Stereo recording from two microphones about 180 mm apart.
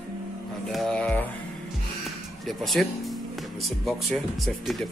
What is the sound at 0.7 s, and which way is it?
Speech, centre (ahead or behind).